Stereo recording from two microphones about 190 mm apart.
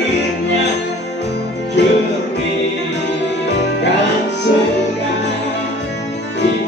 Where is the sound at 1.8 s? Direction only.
65° left (ahead or behind).